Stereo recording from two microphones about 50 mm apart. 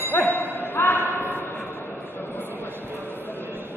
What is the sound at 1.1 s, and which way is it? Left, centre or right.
Train, left.